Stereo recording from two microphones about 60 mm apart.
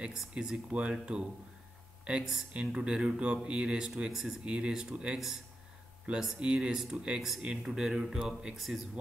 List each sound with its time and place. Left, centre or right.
0.3 s speech: centre